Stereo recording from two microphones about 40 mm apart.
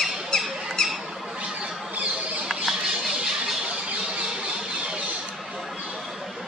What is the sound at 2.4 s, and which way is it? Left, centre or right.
Mouse, centre.